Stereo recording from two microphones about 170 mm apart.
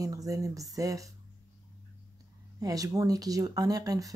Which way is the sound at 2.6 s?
20° right (ahead or behind).